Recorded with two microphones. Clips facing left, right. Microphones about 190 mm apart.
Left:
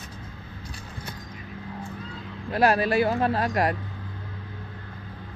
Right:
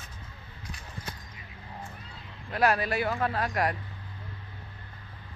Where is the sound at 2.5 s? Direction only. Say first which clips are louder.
Left 5 dB; 30° left (ahead or behind).